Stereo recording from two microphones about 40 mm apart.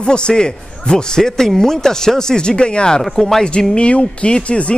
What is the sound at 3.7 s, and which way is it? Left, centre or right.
A man's voice, left.